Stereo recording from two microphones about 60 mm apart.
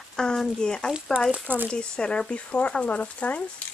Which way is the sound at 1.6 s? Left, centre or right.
Centre.